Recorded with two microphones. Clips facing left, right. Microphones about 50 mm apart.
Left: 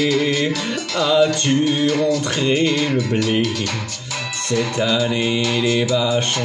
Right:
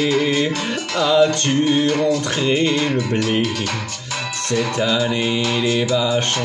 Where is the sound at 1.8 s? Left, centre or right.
Right.